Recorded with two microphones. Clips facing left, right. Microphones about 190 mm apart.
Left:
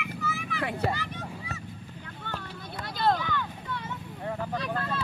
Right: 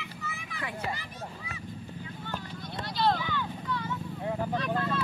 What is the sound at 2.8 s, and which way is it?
Vehicle, 50° left (ahead or behind).